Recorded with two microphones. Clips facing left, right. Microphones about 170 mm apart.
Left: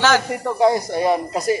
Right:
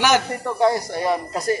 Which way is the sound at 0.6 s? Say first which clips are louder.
Left 3 dB; 15° left (ahead or behind).